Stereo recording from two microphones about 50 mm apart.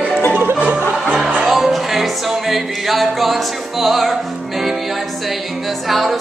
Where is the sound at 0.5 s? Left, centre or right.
Right.